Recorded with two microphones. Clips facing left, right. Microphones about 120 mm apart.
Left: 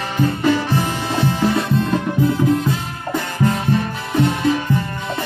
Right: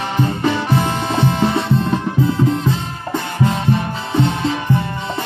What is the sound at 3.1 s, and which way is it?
Music, 25° right (ahead or behind).